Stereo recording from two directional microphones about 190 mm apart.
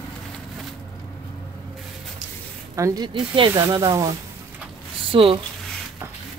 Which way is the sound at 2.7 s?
20° right (ahead or behind).